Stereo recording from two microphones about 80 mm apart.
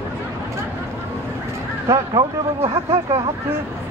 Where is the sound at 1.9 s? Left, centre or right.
Right.